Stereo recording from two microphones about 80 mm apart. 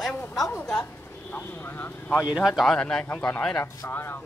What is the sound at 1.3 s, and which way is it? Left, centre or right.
Vehicle, left.